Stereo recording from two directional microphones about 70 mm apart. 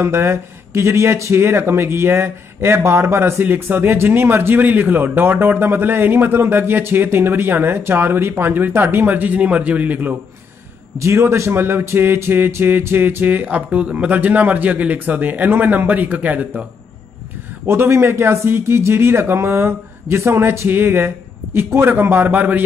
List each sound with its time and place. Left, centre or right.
0.0 s a man's voice: right
11.0 s speech: right
17.6 s a man's voice: right